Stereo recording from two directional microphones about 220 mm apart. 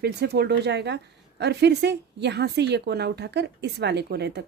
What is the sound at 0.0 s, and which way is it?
A woman's voice, 50° right (ahead or behind).